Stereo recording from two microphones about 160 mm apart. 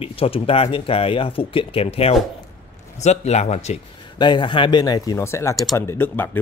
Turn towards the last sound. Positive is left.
turn(degrees=15)  # may be behind; listen again after turning